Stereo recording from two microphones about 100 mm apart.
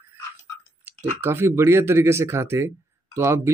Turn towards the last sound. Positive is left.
turn(degrees=-25)  # may be behind; listen again after turning